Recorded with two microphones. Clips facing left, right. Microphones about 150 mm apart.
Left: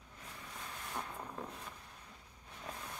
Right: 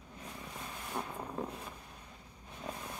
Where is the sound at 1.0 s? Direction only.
15° right (ahead or behind).